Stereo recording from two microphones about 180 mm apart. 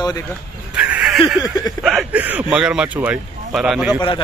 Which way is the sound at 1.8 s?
Centre (ahead or behind).